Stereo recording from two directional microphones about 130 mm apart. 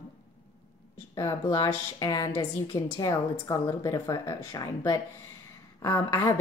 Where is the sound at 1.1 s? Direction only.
30° left (ahead or behind).